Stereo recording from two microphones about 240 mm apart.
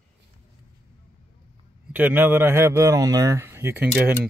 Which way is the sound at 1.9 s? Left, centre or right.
Centre.